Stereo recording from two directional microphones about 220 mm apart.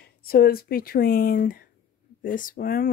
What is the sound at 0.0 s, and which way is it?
Speech, 45° left (ahead or behind).